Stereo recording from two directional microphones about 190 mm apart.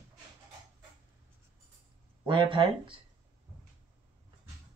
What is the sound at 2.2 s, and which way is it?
Speech, 25° right (ahead or behind).